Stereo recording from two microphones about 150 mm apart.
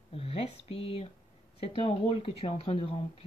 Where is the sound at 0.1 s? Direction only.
40° left (ahead or behind).